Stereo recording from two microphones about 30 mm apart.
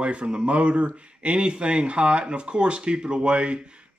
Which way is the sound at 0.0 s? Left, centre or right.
Right.